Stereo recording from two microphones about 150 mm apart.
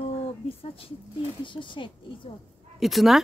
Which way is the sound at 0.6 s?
40° left (ahead or behind).